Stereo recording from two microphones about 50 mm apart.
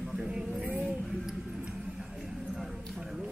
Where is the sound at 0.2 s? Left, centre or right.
Centre.